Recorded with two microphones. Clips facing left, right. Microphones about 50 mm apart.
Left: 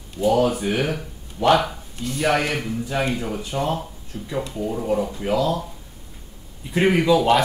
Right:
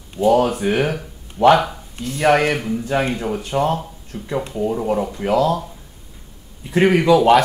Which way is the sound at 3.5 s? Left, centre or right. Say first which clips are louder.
Right 5 dB; right.